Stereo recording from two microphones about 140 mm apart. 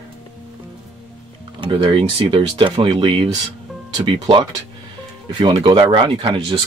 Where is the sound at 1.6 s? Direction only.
35° right (ahead or behind).